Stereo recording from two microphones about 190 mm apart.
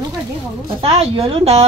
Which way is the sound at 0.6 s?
30° right (ahead or behind).